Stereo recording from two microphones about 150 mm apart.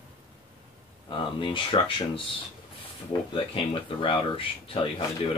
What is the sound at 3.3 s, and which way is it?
Speech, 35° left (ahead or behind).